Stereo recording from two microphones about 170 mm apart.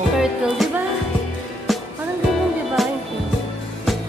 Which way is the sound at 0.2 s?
5° right (ahead or behind).